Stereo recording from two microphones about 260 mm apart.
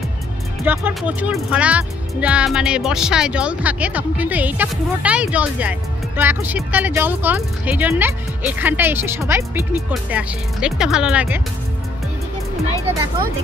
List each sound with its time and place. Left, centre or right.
0.7 s speech: centre